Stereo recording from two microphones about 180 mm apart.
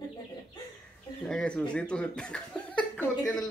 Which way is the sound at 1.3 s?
5° left (ahead or behind).